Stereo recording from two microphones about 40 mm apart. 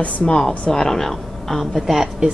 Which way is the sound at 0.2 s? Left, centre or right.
Left.